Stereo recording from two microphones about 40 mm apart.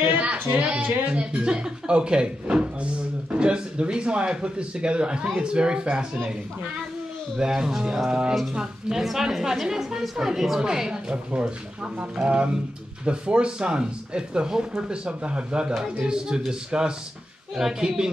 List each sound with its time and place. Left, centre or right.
0.6 s speech: right
7.3 s a woman's voice: centre
8.1 s speech: right
8.9 s a woman's voice: centre
10.6 s a woman's voice: centre